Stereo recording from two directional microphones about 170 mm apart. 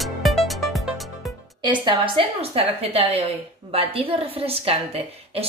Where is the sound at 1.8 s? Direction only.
30° right (ahead or behind).